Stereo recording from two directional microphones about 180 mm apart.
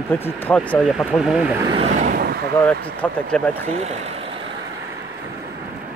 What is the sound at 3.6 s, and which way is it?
Speech, 40° right (ahead or behind).